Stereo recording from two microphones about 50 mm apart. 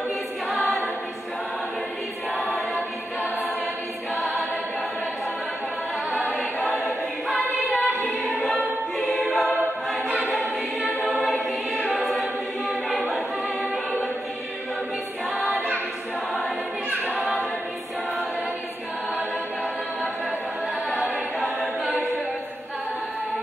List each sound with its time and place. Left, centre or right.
0.5 s choir: centre
4.1 s choir: centre
6.2 s choir: left
7.2 s choir: centre
8.0 s choir: left
10.8 s choir: left
12.1 s choir: centre
17.0 s a capella: right